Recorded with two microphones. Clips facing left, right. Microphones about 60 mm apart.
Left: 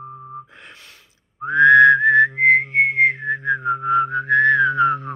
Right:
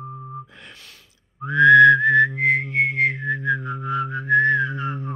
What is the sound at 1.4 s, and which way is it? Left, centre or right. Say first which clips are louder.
Whistling: left 1 dB; left.